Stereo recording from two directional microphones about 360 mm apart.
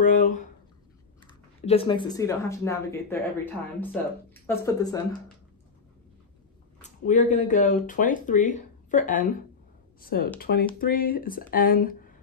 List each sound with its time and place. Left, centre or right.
0.0 s speech: left
6.8 s speech: left